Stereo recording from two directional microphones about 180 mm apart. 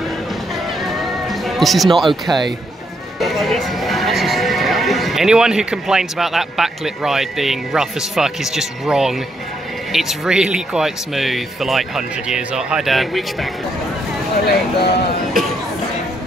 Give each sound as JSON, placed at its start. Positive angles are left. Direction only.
{"t": 0.8, "sound": "music", "side_deg": 0}
{"t": 3.2, "sound": "speech", "side_deg": 0}
{"t": 14.5, "sound": "speech", "side_deg": 65}